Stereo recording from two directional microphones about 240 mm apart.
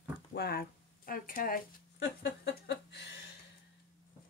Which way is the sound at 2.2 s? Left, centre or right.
Left.